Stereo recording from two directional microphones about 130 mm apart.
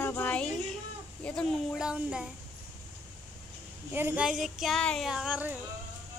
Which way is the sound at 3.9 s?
15° right (ahead or behind).